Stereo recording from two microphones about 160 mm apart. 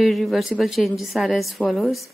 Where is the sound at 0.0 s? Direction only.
Centre (ahead or behind).